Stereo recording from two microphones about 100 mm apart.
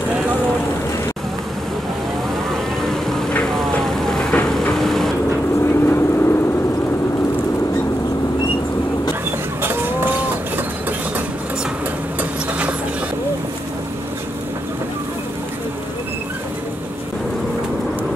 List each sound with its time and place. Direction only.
2.5 s vehicle: 5° left (ahead or behind)
5.6 s vehicle: 25° left (ahead or behind)
9.6 s livestock: 25° right (ahead or behind)
12.2 s a sound: 15° right (ahead or behind)